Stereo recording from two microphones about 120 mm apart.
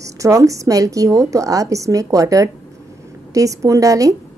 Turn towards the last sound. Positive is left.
turn(degrees=-30)  # may be behind; listen again after turning